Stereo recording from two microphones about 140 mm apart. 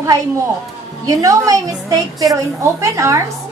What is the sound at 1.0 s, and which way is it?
A woman's voice, 25° right (ahead or behind).